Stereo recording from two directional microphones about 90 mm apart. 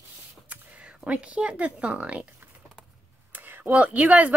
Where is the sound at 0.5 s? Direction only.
15° right (ahead or behind).